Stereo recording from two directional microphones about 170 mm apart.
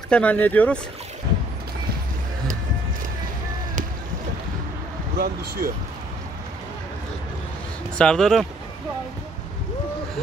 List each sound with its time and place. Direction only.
0.1 s speech: 10° left (ahead or behind)
5.1 s speech: 65° right (ahead or behind)
8.0 s speech: 5° left (ahead or behind)